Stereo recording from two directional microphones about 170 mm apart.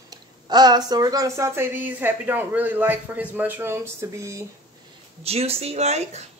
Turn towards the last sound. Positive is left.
turn(degrees=-40)  # may be behind; listen again after turning